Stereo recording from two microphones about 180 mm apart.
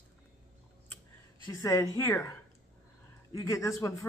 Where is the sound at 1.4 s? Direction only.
15° left (ahead or behind).